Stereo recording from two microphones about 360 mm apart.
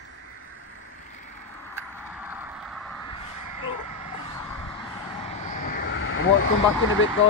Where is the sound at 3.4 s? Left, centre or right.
Left.